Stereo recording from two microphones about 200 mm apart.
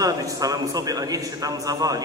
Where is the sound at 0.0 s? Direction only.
15° right (ahead or behind).